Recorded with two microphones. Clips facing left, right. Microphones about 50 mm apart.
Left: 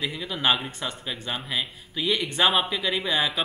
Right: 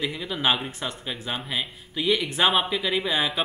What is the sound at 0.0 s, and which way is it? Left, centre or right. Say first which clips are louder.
Speech: right 1 dB; centre.